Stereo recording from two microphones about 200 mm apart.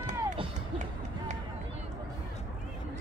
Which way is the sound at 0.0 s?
35° right (ahead or behind).